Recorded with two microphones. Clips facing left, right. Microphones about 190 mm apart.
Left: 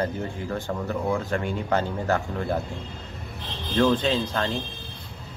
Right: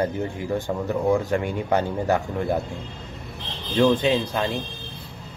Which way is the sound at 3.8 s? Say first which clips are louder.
Right 3 dB; 15° right (ahead or behind).